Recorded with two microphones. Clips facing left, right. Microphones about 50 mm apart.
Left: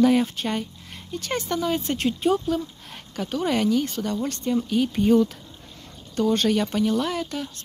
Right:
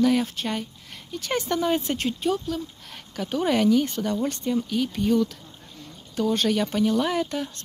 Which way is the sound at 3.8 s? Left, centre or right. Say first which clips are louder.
Right 1 dB; centre.